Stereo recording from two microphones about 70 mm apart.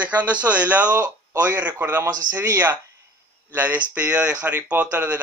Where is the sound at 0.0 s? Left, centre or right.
Right.